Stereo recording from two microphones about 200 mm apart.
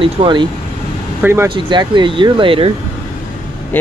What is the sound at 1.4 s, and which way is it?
Speech, 25° right (ahead or behind).